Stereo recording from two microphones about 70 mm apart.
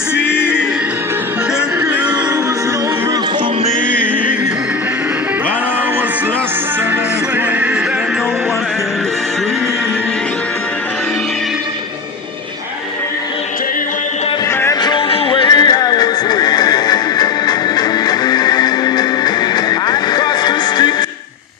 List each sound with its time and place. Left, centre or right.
0.2 s music: left
15.4 s music: left